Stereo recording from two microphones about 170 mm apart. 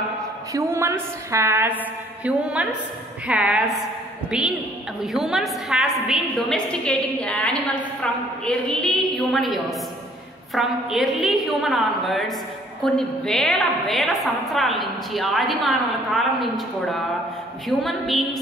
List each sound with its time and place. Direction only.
0.5 s a woman's voice: 15° right (ahead or behind); by 18.4 s centre (ahead or behind)